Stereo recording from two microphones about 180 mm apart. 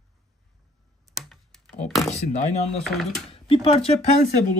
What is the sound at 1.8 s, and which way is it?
Speech, centre (ahead or behind).